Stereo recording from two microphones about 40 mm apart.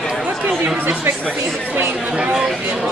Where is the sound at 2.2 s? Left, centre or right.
Right.